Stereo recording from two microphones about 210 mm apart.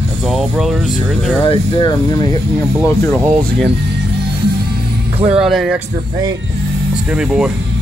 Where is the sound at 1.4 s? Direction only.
20° left (ahead or behind).